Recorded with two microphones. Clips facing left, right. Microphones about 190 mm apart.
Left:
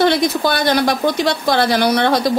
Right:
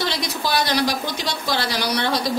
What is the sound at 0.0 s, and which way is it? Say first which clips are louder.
Speech: left 10 dB; 55° left (ahead or behind).